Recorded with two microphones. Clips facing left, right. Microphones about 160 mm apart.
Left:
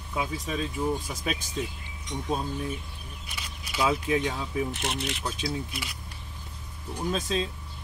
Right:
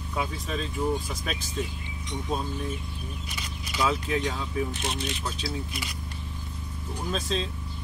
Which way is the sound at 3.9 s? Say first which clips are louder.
Left 2 dB; 15° left (ahead or behind).